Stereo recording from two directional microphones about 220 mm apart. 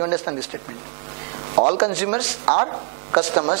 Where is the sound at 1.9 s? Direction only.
10° right (ahead or behind).